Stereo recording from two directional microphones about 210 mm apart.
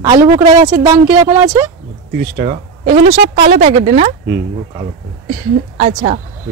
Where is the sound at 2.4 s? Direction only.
30° right (ahead or behind).